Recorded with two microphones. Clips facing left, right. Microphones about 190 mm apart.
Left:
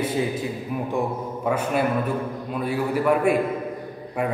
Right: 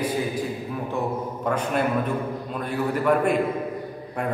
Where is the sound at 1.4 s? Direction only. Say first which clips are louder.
Left 2 dB; 5° left (ahead or behind).